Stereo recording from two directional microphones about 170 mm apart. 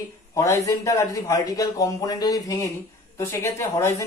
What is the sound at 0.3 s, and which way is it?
A man's voice, 20° left (ahead or behind).